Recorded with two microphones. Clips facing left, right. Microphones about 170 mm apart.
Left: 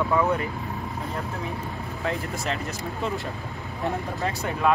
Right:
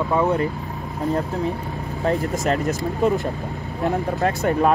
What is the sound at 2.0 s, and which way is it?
Speech, 45° right (ahead or behind).